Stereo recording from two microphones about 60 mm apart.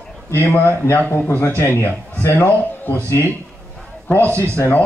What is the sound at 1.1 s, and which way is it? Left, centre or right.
A man's voice, left.